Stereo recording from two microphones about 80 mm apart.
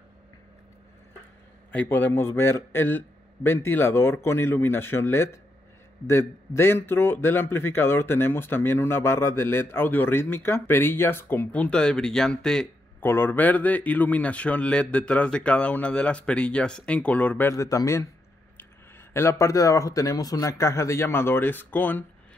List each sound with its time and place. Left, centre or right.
1.7 s a man's voice: left
13.0 s speech: left
17.5 s speech: left
19.1 s speech: left